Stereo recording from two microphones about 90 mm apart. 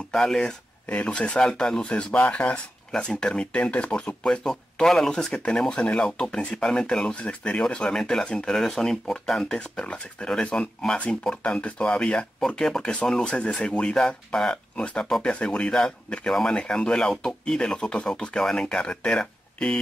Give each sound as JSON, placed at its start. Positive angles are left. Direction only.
{"t": 0.1, "sound": "speech", "side_deg": 5}